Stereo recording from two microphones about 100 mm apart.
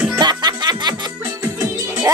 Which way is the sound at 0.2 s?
45° right (ahead or behind).